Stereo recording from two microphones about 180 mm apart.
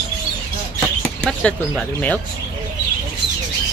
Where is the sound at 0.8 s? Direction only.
5° left (ahead or behind).